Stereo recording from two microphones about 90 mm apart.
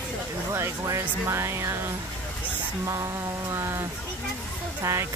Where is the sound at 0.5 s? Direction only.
35° right (ahead or behind).